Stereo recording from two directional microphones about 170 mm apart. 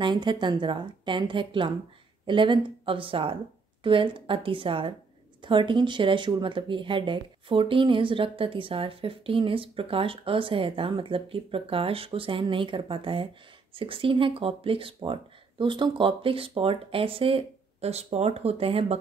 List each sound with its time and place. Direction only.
0.0 s a woman's voice: 25° right (ahead or behind)